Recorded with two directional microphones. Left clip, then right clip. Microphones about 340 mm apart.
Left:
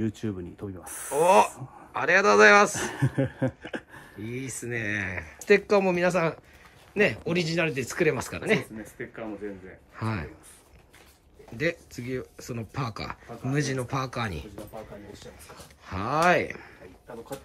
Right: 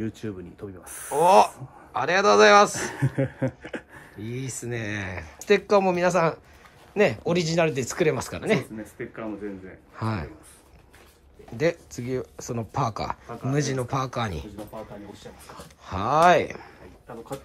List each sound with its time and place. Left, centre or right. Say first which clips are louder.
0.0 s speech: left 1 dB; left
1.2 s speech: right 3 dB; centre
2.7 s speech: right 1 dB; centre
4.2 s speech: right 1 dB; centre
11.5 s speech: right 4 dB; centre
15.8 s speech: right 5 dB; centre